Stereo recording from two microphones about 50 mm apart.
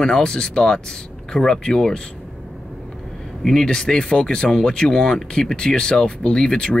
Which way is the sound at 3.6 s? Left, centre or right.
Centre.